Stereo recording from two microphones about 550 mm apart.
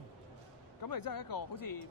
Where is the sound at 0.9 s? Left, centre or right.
Left.